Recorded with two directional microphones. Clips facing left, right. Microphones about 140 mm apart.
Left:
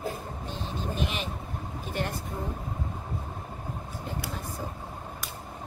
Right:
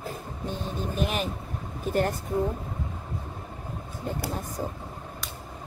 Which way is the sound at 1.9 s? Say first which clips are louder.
Right 7 dB; 45° right (ahead or behind).